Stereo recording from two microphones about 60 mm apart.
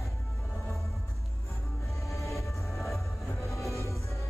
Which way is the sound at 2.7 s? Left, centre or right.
Centre.